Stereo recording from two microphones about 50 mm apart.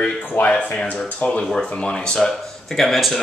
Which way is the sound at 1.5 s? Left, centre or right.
Centre.